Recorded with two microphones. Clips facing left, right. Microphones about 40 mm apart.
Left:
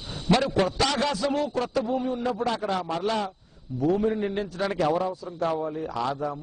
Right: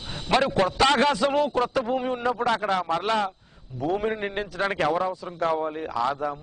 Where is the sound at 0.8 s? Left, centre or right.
Right.